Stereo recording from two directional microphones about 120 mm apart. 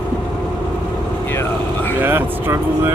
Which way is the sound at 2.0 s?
20° right (ahead or behind).